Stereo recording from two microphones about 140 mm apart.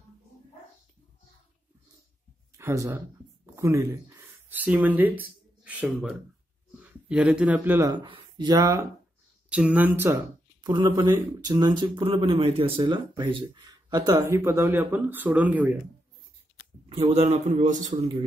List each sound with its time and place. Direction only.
2.5 s speech: 20° right (ahead or behind)
7.9 s speech: 35° right (ahead or behind)
9.5 s speech: 10° right (ahead or behind)
10.6 s speech: 30° right (ahead or behind); by 15.8 s 10° right (ahead or behind)
16.9 s a man's voice: 45° right (ahead or behind)